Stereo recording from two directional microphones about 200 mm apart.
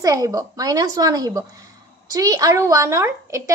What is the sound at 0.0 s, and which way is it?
A woman's voice, 15° right (ahead or behind).